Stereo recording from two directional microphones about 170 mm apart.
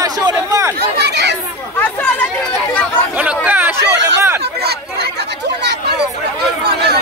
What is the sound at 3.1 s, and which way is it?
Chatter, 10° right (ahead or behind).